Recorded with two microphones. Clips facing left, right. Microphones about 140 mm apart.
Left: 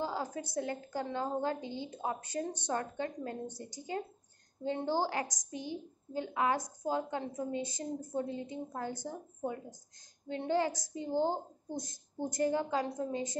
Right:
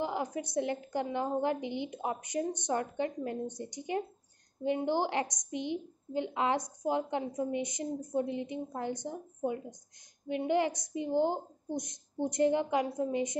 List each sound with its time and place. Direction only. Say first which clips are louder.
0.0 s a woman's voice: right 3 dB; 20° right (ahead or behind)